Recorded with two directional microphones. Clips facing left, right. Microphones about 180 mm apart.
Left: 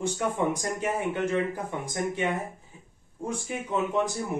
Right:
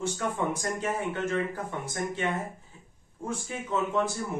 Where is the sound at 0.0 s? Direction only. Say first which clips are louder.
Left 3 dB; 15° left (ahead or behind).